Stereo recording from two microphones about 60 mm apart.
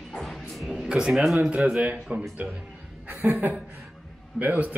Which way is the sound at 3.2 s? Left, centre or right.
Right.